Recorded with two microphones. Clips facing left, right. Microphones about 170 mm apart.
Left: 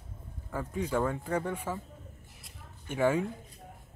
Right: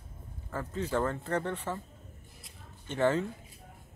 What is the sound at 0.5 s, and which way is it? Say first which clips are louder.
Speech: left 1 dB; 10° left (ahead or behind).